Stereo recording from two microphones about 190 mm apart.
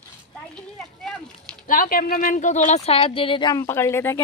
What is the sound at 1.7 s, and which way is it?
A woman's voice, 45° left (ahead or behind).